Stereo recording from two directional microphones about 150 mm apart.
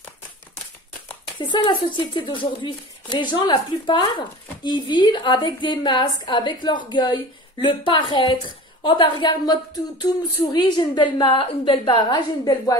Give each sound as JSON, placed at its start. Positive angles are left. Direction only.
{"t": 1.4, "sound": "a woman's voice", "side_deg": 30}